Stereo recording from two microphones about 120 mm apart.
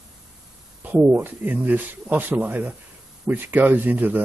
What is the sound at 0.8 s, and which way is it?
A man's voice, 10° right (ahead or behind).